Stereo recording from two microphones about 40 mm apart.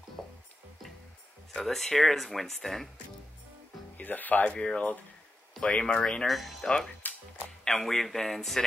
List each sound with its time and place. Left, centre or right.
1.5 s speech: centre
4.0 s speech: left
4.6 s speech: left
5.9 s speech: centre
6.2 s speech: centre
7.0 s music: left
7.6 s speech: centre